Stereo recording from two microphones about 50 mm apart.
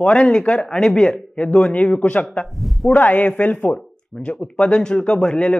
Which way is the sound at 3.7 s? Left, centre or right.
Centre.